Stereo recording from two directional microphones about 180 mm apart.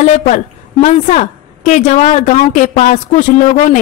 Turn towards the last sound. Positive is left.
turn(degrees=45)  # may be behind; listen again after turning